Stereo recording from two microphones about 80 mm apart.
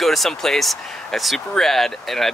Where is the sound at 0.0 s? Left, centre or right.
Centre.